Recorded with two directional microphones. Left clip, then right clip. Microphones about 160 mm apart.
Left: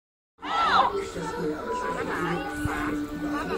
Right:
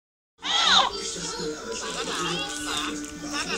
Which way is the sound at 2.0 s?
20° right (ahead or behind).